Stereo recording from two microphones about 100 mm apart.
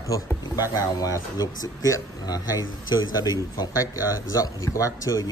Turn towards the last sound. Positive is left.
turn(degrees=35)  # may be behind; listen again after turning